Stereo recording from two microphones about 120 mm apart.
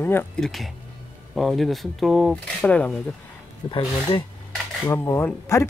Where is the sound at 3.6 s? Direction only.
45° left (ahead or behind).